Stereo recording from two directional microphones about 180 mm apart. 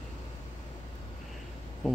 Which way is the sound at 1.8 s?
Centre (ahead or behind).